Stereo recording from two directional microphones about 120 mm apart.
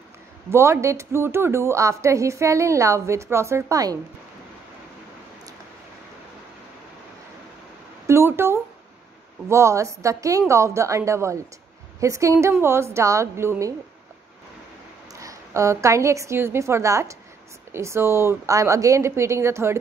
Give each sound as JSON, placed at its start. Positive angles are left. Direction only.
{"t": 0.5, "sound": "speech", "side_deg": -20}
{"t": 8.1, "sound": "a sound", "side_deg": -20}
{"t": 9.5, "sound": "speech", "side_deg": -25}
{"t": 15.1, "sound": "a woman's voice", "side_deg": -25}